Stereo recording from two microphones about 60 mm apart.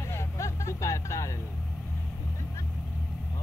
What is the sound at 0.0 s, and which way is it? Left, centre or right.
Vehicle, left.